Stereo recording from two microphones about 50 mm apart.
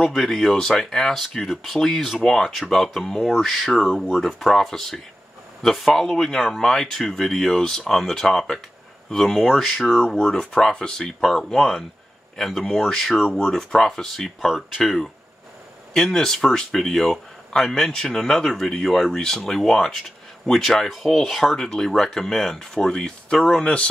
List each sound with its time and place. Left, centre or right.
0.0 s speech: centre
3.7 s speech: centre
4.1 s speech: centre
10.0 s speech: centre
15.9 s speech: centre
21.5 s speech: centre